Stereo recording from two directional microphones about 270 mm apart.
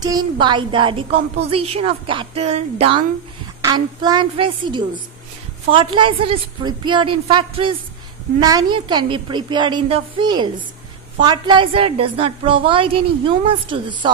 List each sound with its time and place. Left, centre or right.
0.0 s a woman's voice: centre